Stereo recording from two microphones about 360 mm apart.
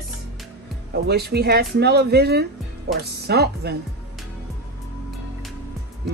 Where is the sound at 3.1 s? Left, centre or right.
Right.